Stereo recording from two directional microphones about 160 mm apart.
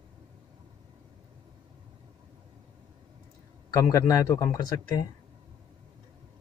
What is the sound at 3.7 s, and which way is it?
Speech, 20° left (ahead or behind).